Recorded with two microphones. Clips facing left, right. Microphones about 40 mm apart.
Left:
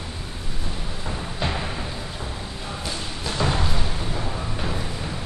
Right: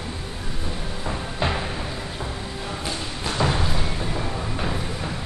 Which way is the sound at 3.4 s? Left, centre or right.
Centre.